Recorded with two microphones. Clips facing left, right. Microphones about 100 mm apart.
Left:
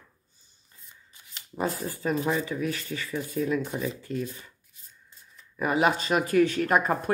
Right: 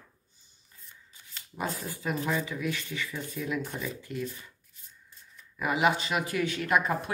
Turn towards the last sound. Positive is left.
turn(degrees=40)  # may be behind; listen again after turning